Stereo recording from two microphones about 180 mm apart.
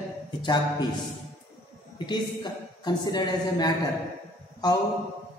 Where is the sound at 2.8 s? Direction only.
25° left (ahead or behind).